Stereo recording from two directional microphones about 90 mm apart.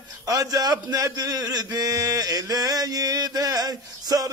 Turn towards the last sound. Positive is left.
turn(degrees=-45)  # may be behind; listen again after turning